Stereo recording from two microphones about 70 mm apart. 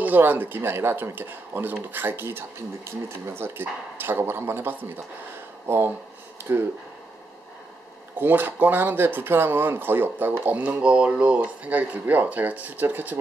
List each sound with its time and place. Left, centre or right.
0.0 s speech: right
8.2 s speech: right